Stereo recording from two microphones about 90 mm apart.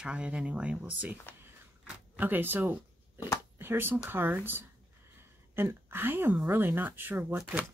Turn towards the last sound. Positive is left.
turn(degrees=-25)  # may be behind; listen again after turning